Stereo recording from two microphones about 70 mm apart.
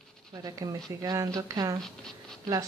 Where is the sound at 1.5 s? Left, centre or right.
Right.